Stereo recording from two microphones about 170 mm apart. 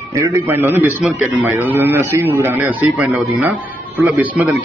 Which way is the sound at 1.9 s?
10° right (ahead or behind).